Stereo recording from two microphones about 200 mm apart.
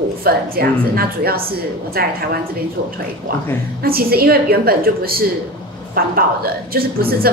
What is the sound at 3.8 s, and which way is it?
A woman's voice, 50° right (ahead or behind).